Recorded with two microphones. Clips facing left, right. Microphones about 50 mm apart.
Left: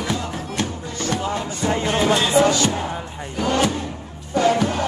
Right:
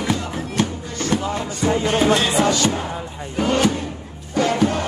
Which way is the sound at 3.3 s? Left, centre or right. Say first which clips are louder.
Right 2 dB; centre.